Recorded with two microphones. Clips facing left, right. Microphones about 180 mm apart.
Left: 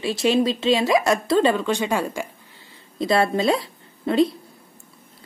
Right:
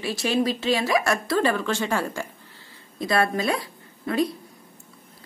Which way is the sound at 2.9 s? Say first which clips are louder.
Left 3 dB; 25° left (ahead or behind).